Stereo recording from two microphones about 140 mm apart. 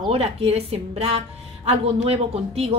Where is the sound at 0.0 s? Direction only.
45° right (ahead or behind).